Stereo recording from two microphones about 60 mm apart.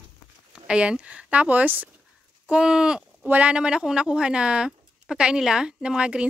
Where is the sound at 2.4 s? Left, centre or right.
Centre.